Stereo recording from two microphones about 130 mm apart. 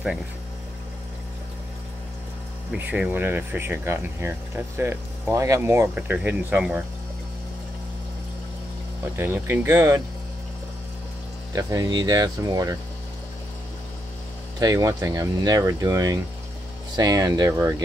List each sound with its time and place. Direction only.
2.7 s speech: 10° right (ahead or behind)
5.9 s speech: 10° right (ahead or behind)
9.1 s speech: 20° right (ahead or behind)
11.5 s speech: 30° right (ahead or behind)
14.6 s speech: 30° right (ahead or behind)